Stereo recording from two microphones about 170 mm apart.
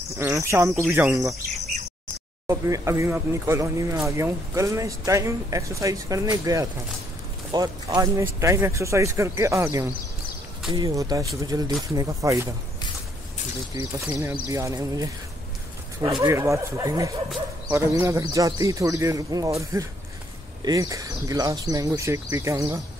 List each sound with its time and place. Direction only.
0.2 s speech: 20° right (ahead or behind)
2.4 s speech: 15° right (ahead or behind)
13.7 s speech: 10° right (ahead or behind)